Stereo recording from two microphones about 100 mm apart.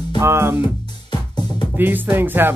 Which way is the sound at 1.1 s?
50° left (ahead or behind).